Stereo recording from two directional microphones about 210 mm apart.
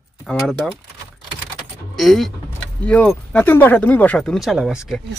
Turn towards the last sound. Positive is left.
turn(degrees=0)  # may be behind; listen again after turning